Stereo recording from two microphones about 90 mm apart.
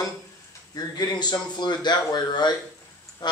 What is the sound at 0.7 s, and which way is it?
Speech, 50° left (ahead or behind).